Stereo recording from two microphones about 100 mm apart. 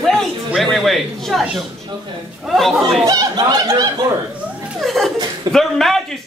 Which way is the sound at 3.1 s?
45° right (ahead or behind).